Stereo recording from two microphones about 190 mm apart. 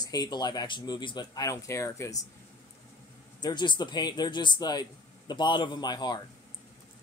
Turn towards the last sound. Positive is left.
turn(degrees=20)  # may be behind; listen again after turning